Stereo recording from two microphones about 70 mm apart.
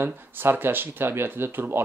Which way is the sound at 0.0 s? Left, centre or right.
Right.